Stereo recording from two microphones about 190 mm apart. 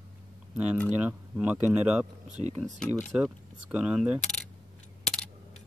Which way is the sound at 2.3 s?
35° right (ahead or behind).